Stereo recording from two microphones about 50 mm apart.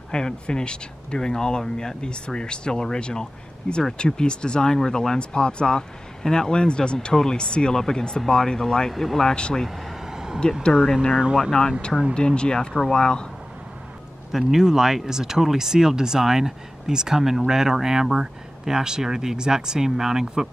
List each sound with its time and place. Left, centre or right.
0.1 s speech: centre
9.3 s speech: centre
9.7 s vehicle: centre
10.9 s speech: centre
14.3 s speech: centre